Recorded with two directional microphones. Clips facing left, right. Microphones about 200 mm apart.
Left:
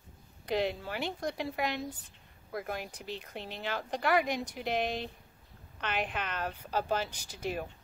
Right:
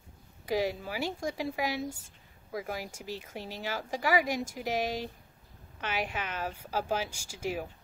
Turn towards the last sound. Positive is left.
turn(degrees=-10)  # may be behind; listen again after turning